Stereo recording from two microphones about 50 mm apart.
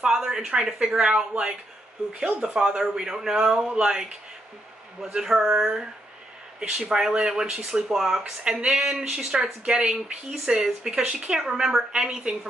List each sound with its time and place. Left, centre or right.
0.0 s speech: centre
6.6 s speech: right
8.2 s speech: centre